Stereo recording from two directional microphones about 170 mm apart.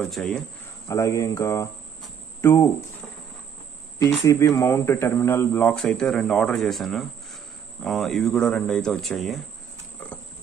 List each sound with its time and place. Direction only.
0.0 s speech: centre (ahead or behind)
0.8 s speech: 20° left (ahead or behind)
4.3 s speech: 20° left (ahead or behind); by 9.4 s centre (ahead or behind)